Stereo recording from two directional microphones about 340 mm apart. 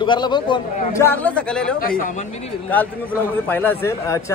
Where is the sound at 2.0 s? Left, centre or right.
Left.